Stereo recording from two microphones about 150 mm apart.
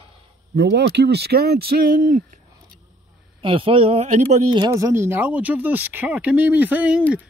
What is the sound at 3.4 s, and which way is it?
Speech, 35° right (ahead or behind).